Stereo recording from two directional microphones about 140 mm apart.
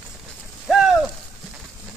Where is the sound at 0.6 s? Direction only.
Centre (ahead or behind).